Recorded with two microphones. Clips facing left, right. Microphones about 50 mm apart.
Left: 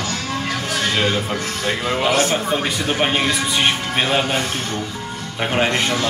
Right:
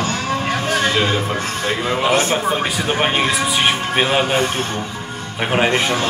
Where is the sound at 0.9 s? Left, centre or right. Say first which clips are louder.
Right 2 dB; centre.